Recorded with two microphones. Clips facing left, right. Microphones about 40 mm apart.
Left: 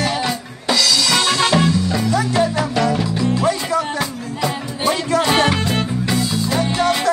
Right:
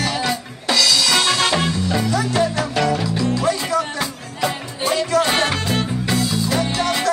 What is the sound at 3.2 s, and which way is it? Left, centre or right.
Music, left.